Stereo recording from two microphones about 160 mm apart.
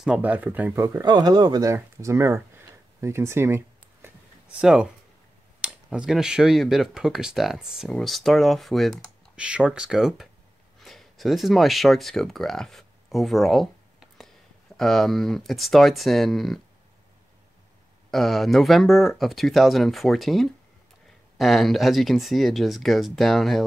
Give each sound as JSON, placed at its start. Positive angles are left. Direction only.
{"t": 0.0, "sound": "speech", "side_deg": -5}
{"t": 0.8, "sound": "speech", "side_deg": -25}
{"t": 18.1, "sound": "speech", "side_deg": 0}